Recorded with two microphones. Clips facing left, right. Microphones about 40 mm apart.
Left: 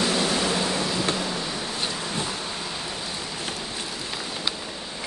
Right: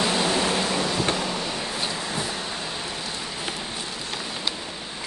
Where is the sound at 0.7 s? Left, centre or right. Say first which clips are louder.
Right 1 dB; centre.